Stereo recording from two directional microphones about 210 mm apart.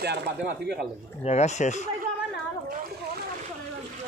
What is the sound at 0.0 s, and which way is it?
Speech, 50° right (ahead or behind).